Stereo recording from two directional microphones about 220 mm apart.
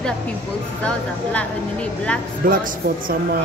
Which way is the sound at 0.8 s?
5° left (ahead or behind).